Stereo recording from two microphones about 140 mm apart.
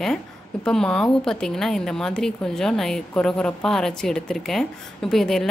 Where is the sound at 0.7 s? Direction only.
5° left (ahead or behind).